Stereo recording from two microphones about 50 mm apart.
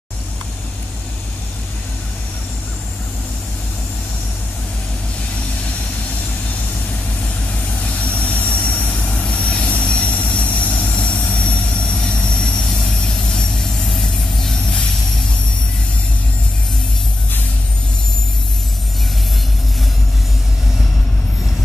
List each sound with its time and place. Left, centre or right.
7.8 s vehicle: left